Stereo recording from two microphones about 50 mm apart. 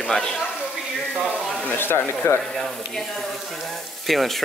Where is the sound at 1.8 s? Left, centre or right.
Left.